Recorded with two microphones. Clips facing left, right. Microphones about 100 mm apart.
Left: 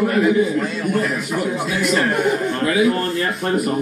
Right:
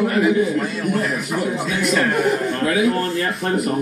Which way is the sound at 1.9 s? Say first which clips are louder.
Even; centre (ahead or behind).